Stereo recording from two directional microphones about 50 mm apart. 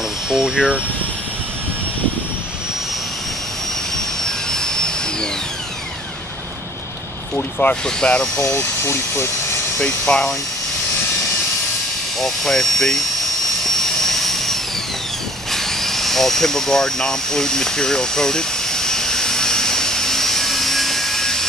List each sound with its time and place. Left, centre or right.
0.3 s speech: centre
3.9 s jet engine: centre
7.3 s speech: left
7.8 s speech: centre
8.5 s speech: left
9.8 s speech: centre
12.2 s speech: centre
13.7 s jet engine: centre
15.5 s a sound: centre